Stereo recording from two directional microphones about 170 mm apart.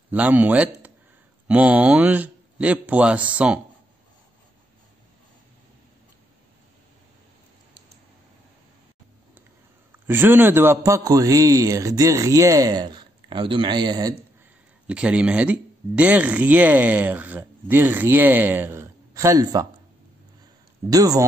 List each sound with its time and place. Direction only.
0.1 s speech: 10° right (ahead or behind)
10.0 s a man's voice: 10° right (ahead or behind)
14.9 s speech: 5° right (ahead or behind)
20.9 s a man's voice: 20° right (ahead or behind)